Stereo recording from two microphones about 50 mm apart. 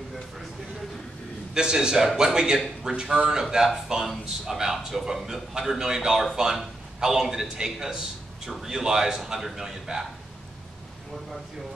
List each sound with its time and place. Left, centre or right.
1.5 s speech: centre